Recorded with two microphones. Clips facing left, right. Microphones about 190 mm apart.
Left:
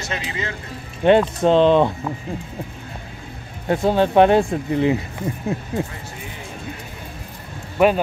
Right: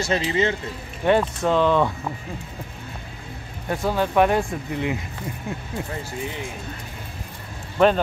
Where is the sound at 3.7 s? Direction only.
25° left (ahead or behind).